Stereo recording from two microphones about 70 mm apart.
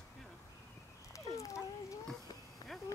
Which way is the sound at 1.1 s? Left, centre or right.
Left.